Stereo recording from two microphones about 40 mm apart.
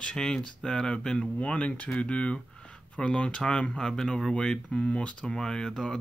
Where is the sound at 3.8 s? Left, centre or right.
Centre.